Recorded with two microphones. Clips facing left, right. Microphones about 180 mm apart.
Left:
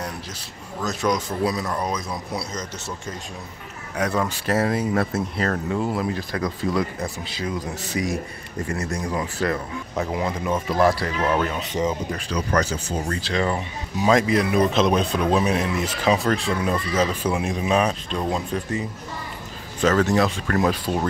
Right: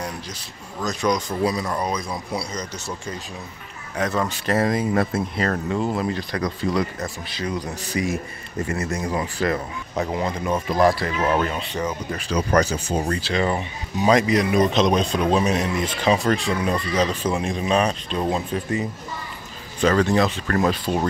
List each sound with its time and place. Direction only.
0.8 s speech: 5° left (ahead or behind)
3.9 s speech: 10° left (ahead or behind)
11.7 s speech: 20° left (ahead or behind)
12.3 s speech: 20° right (ahead or behind); by 18.8 s centre (ahead or behind)
19.8 s speech: 5° left (ahead or behind)